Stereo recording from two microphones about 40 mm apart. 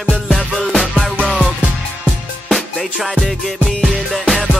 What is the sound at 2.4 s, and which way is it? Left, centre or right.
Music, centre.